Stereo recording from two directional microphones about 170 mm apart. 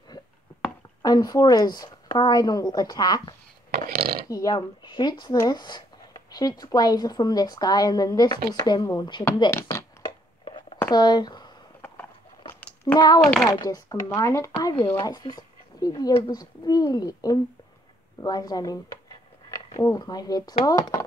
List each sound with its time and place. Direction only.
1.0 s speech: 20° left (ahead or behind)
3.9 s speech: 65° right (ahead or behind)
4.3 s speech: 20° left (ahead or behind)
10.9 s speech: 25° left (ahead or behind)
12.8 s speech: 25° left (ahead or behind)
13.2 s a child's voice: 5° left (ahead or behind)
13.5 s speech: 20° left (ahead or behind)